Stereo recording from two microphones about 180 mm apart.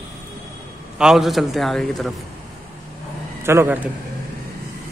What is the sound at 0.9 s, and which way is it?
A man's voice, 5° right (ahead or behind).